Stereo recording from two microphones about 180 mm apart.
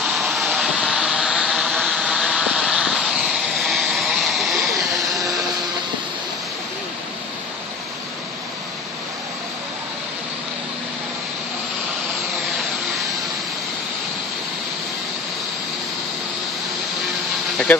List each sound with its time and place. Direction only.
0.0 s vehicle: centre (ahead or behind)